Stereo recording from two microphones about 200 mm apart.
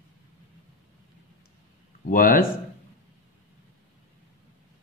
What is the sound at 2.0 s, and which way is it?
Speech, 45° left (ahead or behind).